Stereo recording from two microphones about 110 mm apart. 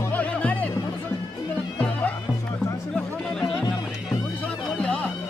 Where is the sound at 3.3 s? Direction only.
5° left (ahead or behind).